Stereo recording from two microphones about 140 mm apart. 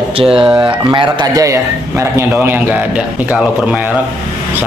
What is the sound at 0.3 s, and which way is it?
Speech, 5° right (ahead or behind).